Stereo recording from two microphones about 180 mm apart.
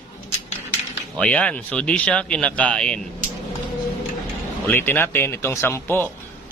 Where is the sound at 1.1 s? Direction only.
5° left (ahead or behind).